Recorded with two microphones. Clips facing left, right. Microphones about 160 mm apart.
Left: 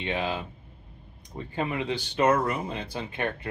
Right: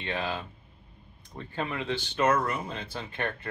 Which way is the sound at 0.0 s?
20° left (ahead or behind).